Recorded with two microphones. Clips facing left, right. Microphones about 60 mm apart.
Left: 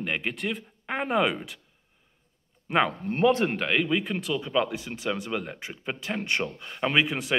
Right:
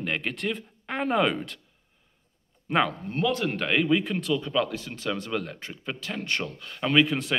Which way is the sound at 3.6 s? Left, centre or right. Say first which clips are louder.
Right 2 dB; centre.